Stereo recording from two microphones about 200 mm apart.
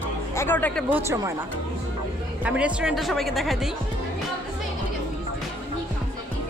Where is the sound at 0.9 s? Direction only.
15° right (ahead or behind).